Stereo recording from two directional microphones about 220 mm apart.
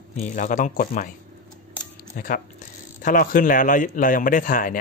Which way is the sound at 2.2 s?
40° left (ahead or behind).